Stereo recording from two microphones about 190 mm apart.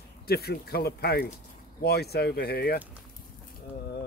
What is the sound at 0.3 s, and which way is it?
Speech, 55° left (ahead or behind).